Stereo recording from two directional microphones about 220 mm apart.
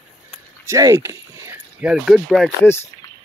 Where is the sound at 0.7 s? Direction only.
15° right (ahead or behind); by 2.9 s 10° left (ahead or behind).